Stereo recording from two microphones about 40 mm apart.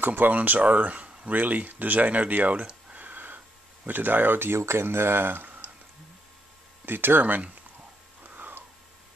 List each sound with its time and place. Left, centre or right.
0.0 s speech: right
0.4 s speech: right
1.3 s speech: right
3.0 s a sound: right
3.8 s speech: right
6.9 s speech: right
8.4 s a sound: right